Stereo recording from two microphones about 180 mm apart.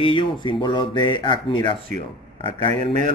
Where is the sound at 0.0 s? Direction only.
25° left (ahead or behind).